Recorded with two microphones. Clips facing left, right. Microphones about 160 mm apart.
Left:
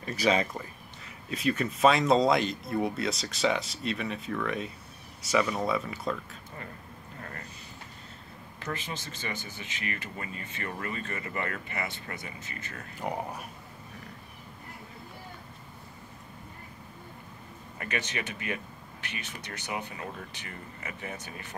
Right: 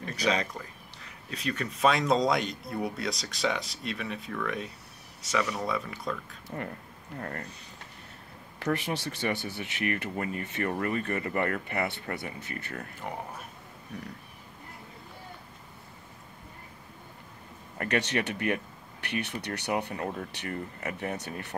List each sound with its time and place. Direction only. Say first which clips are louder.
0.0 s speech: left 2 dB; 5° left (ahead or behind)
6.5 s speech: right 8 dB; 45° right (ahead or behind)
8.5 s speech: right 7 dB; 70° right (ahead or behind)
13.0 s speech: left 5 dB; 15° left (ahead or behind)
17.7 s speech: right 6 dB; 70° right (ahead or behind); by 20.2 s 50° right (ahead or behind)
20.3 s speech: right 8 dB; 65° right (ahead or behind)